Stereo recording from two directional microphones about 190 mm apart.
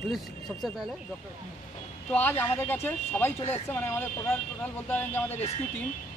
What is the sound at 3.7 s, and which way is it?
Speech, 10° left (ahead or behind).